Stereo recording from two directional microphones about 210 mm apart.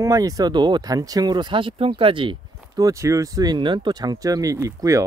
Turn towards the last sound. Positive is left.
turn(degrees=-15)  # may be behind; listen again after turning